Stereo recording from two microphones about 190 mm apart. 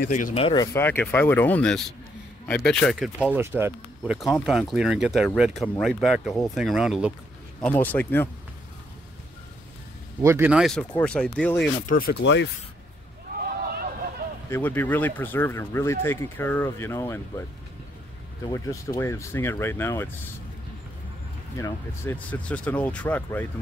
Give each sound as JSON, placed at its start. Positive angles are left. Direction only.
{"t": 0.1, "sound": "speech", "side_deg": 40}
{"t": 0.4, "sound": "speech", "side_deg": 25}
{"t": 0.7, "sound": "speech", "side_deg": 10}
{"t": 4.0, "sound": "speech", "side_deg": 0}
{"t": 7.6, "sound": "speech", "side_deg": 10}
{"t": 10.2, "sound": "speech", "side_deg": -10}
{"t": 11.9, "sound": "speech", "side_deg": 50}
{"t": 12.2, "sound": "speech", "side_deg": 70}
{"t": 14.5, "sound": "speech", "side_deg": 10}
{"t": 18.5, "sound": "speech", "side_deg": 15}
{"t": 21.5, "sound": "speech", "side_deg": 15}